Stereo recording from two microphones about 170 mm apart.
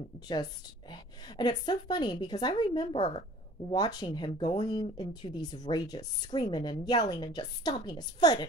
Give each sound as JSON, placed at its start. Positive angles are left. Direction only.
{"t": 0.3, "sound": "a woman's voice", "side_deg": 25}